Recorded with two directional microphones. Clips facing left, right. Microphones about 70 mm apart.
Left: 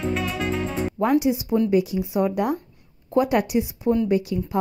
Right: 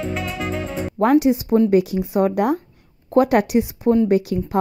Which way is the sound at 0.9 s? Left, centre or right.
Right.